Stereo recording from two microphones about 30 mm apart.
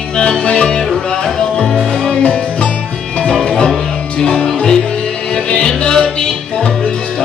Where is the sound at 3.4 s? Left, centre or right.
Left.